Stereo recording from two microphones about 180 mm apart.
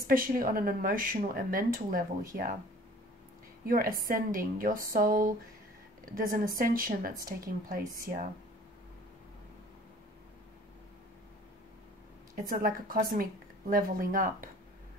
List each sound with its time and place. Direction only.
0.0 s speech: 50° right (ahead or behind)
3.6 s speech: 55° right (ahead or behind)
12.4 s speech: 50° right (ahead or behind)